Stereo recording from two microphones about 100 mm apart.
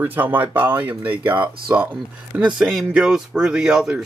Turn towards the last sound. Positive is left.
turn(degrees=-5)  # may be behind; listen again after turning